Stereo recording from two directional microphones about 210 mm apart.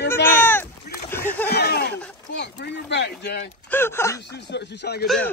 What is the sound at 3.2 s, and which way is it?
Speech, 50° left (ahead or behind).